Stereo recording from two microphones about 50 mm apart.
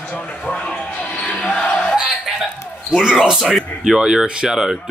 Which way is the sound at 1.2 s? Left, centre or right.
Left.